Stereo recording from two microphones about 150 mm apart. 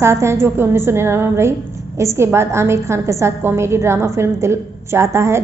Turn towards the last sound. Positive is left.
turn(degrees=-20)  # may be behind; listen again after turning